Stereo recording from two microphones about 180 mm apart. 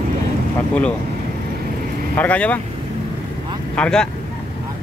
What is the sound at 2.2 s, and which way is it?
Speech, 10° left (ahead or behind).